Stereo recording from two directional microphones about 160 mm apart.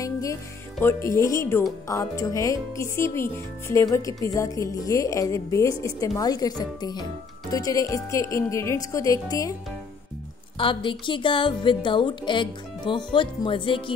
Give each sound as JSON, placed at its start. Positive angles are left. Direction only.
{"t": 0.0, "sound": "music", "side_deg": 20}
{"t": 0.7, "sound": "speech", "side_deg": 15}
{"t": 10.6, "sound": "a woman's voice", "side_deg": 30}